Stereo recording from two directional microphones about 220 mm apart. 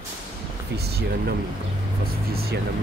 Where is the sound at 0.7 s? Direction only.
45° right (ahead or behind).